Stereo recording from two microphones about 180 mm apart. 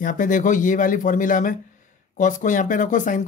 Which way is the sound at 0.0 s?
45° left (ahead or behind).